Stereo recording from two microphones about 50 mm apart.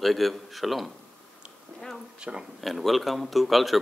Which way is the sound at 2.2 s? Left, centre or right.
Centre.